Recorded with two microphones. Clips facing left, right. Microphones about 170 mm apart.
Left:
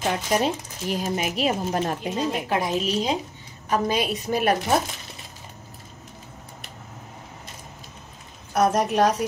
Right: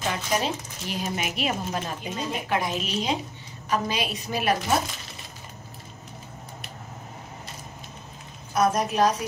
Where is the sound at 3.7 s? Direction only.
50° left (ahead or behind).